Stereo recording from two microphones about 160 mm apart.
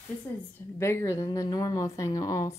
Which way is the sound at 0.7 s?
15° left (ahead or behind).